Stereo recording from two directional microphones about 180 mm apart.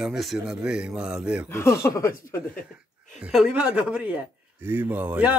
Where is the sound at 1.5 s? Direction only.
15° left (ahead or behind).